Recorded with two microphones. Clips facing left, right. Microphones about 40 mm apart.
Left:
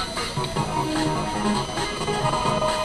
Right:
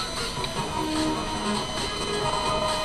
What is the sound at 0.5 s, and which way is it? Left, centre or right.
Music, left.